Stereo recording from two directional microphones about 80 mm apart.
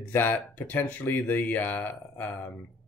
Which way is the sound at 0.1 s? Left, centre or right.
Left.